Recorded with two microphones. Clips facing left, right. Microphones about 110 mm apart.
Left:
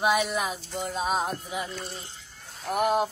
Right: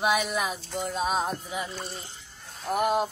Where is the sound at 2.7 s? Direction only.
Centre (ahead or behind).